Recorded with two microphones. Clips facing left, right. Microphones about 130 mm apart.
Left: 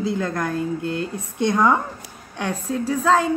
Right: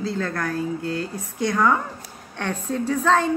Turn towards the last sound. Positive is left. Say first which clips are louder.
# left 1 dB
turn(degrees=10)  # may be behind; listen again after turning